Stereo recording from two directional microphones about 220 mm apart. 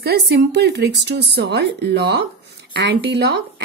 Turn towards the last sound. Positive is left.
turn(degrees=-50)  # may be behind; listen again after turning